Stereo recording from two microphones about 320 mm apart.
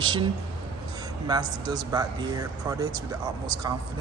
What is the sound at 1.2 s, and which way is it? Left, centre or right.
Speech, centre.